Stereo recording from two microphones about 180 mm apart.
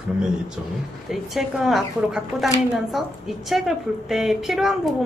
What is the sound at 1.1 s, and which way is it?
A woman's voice, centre (ahead or behind).